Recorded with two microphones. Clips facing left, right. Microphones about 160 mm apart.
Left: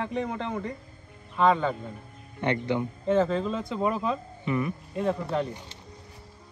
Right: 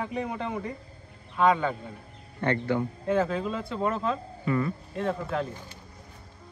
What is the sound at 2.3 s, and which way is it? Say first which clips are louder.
Speech: even; 20° left (ahead or behind).